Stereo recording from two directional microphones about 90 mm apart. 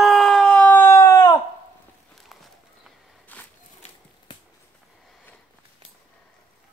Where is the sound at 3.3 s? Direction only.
20° left (ahead or behind).